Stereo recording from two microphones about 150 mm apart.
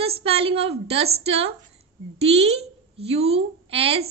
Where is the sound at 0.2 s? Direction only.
40° right (ahead or behind).